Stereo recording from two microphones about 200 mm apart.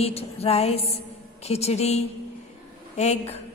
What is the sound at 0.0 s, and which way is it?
A woman's voice, 30° left (ahead or behind).